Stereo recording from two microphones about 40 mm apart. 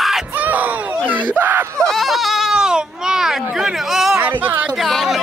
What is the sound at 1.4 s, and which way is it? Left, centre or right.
Screaming, right.